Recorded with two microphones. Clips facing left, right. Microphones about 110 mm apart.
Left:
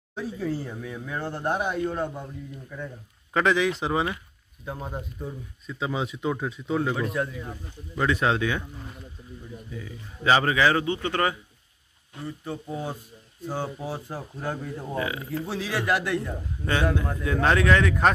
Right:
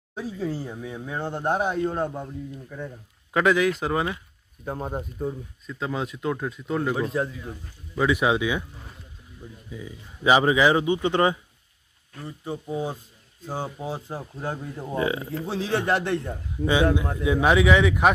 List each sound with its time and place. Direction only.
0.1 s speech: 15° right (ahead or behind)
3.3 s speech: 5° right (ahead or behind)
4.6 s speech: 40° right (ahead or behind)
5.7 s speech: centre (ahead or behind)
7.0 s speech: 30° right (ahead or behind)
7.9 s a man's voice: 10° right (ahead or behind)
9.7 s a man's voice: 15° right (ahead or behind)
15.0 s speech: 25° right (ahead or behind)
16.6 s a man's voice: 10° right (ahead or behind)